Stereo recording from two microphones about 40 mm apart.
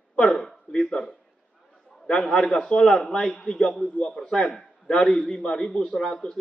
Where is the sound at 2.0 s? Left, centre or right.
Centre.